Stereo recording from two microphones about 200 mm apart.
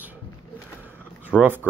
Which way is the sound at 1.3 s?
10° right (ahead or behind).